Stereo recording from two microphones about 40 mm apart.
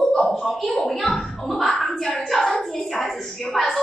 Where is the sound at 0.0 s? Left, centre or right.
Centre.